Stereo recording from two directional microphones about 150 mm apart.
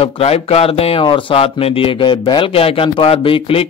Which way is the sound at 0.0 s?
40° left (ahead or behind).